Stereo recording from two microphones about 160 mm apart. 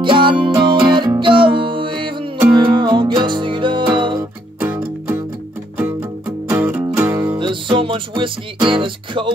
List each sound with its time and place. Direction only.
0.0 s music: 30° right (ahead or behind)
4.6 s music: 10° right (ahead or behind)
7.3 s music: 30° right (ahead or behind)